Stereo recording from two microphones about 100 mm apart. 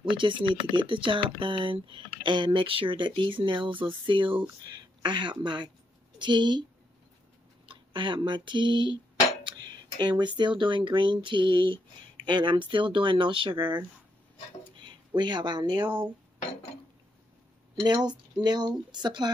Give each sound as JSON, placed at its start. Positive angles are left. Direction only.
{"t": 0.2, "sound": "speech", "side_deg": -55}
{"t": 7.6, "sound": "a sound", "side_deg": -55}
{"t": 10.6, "sound": "speech", "side_deg": -55}
{"t": 17.8, "sound": "speech", "side_deg": -45}